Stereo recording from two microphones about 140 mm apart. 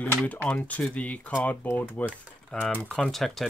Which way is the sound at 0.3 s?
10° left (ahead or behind).